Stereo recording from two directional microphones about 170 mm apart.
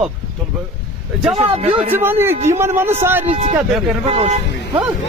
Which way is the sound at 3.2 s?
40° right (ahead or behind).